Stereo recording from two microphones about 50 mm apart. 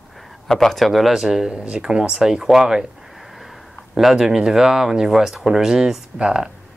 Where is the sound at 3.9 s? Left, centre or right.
Centre.